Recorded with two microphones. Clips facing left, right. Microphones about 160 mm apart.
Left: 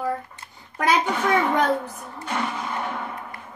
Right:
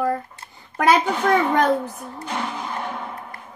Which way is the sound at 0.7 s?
50° right (ahead or behind).